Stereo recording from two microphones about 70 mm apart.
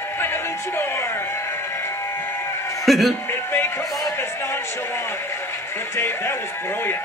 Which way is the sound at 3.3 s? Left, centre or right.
Left.